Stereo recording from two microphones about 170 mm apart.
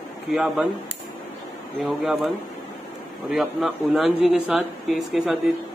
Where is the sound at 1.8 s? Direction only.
Centre (ahead or behind).